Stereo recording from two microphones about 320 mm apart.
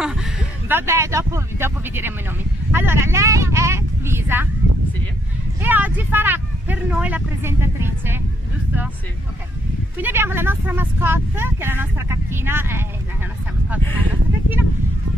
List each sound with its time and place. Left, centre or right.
0.0 s speech: centre
5.6 s speech: centre
9.9 s speech: centre